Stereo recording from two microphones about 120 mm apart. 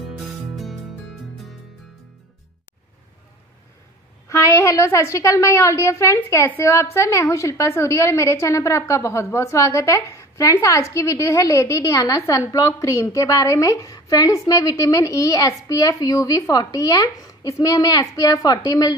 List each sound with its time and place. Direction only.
0.2 s music: centre (ahead or behind)
4.3 s a woman's voice: 25° left (ahead or behind)